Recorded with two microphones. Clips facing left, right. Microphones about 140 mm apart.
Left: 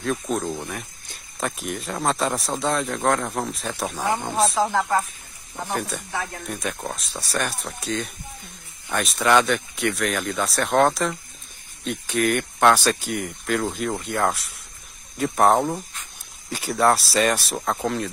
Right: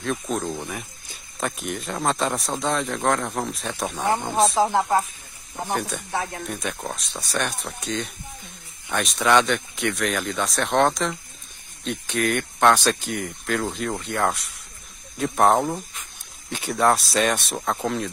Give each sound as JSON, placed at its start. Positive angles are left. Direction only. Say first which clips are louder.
{"t": 0.0, "sound": "speech", "louder": "left 1 dB", "side_deg": 0}
{"t": 4.6, "sound": "speech", "louder": "right 1 dB", "side_deg": -20}
{"t": 5.7, "sound": "speech", "louder": "right 1 dB", "side_deg": 0}